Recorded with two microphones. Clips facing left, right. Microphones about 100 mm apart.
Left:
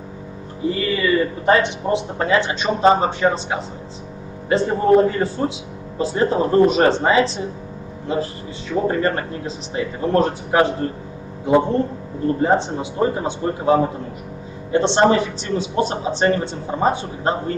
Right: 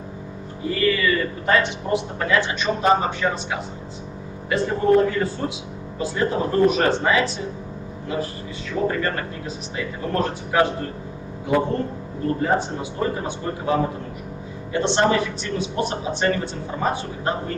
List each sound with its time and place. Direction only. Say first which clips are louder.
0.7 s speech: left 1 dB; 25° left (ahead or behind)